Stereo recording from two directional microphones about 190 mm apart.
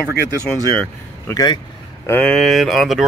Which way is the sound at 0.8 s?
15° left (ahead or behind).